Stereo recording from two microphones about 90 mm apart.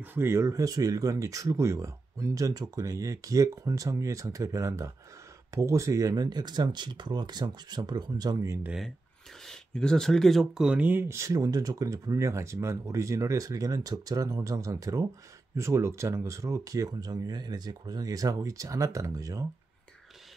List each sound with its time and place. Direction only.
0.0 s speech: 25° right (ahead or behind); by 8.5 s 40° right (ahead or behind)
9.4 s speech: 5° left (ahead or behind); by 11.1 s 20° right (ahead or behind)
11.1 s speech: 35° right (ahead or behind)